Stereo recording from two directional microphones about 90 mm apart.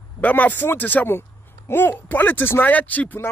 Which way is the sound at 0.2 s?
20° left (ahead or behind).